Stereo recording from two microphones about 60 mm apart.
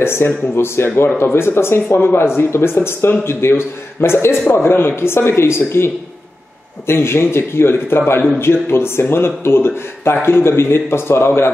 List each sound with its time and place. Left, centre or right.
0.0 s speech: left
0.8 s a man's voice: left
6.9 s speech: left